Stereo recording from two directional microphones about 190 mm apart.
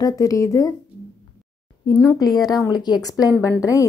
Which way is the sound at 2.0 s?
15° left (ahead or behind).